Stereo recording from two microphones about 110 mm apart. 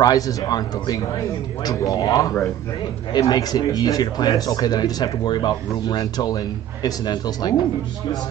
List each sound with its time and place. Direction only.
0.0 s speech: 35° left (ahead or behind)